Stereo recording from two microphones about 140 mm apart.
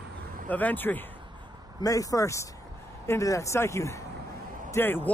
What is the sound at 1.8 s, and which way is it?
Speech, 25° left (ahead or behind).